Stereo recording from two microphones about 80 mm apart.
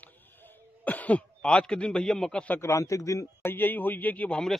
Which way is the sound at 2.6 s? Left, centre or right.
Left.